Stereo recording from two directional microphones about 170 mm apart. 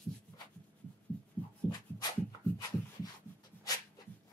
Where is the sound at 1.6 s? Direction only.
5° left (ahead or behind).